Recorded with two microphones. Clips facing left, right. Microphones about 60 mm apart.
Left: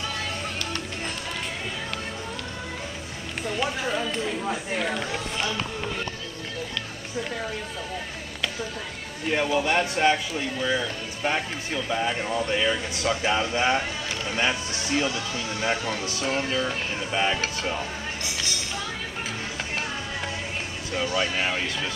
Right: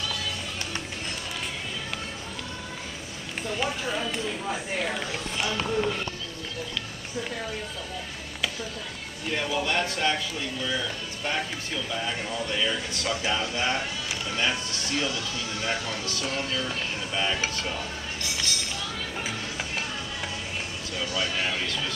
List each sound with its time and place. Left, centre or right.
3.9 s speech: centre
9.3 s speech: left
20.9 s speech: left